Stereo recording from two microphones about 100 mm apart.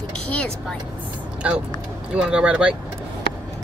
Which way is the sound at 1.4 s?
10° right (ahead or behind).